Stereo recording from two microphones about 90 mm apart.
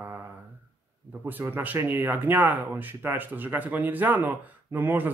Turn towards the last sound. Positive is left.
turn(degrees=-20)  # may be behind; listen again after turning